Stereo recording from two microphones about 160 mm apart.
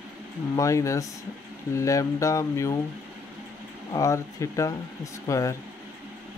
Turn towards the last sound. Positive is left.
turn(degrees=20)  # may be behind; listen again after turning